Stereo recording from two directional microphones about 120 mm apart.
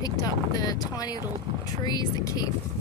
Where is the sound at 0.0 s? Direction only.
35° left (ahead or behind).